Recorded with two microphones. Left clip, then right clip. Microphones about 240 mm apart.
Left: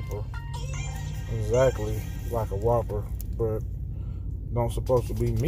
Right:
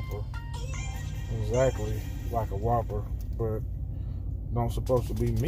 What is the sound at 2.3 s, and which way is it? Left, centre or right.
Speech, centre.